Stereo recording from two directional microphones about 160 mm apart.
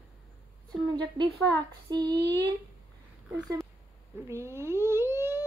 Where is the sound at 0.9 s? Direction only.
30° right (ahead or behind).